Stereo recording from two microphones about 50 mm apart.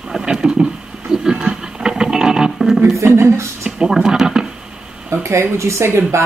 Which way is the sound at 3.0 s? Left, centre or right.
Right.